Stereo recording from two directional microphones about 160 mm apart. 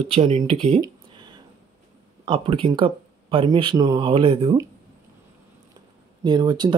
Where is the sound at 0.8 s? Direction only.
25° right (ahead or behind).